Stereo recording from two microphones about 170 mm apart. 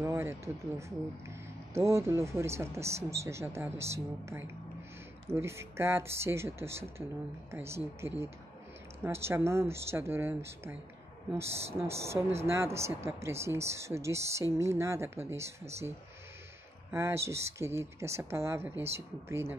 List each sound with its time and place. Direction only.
0.0 s speech: 15° right (ahead or behind)
16.9 s speech: 15° right (ahead or behind)